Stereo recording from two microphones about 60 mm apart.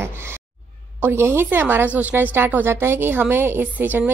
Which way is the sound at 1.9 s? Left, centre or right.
Right.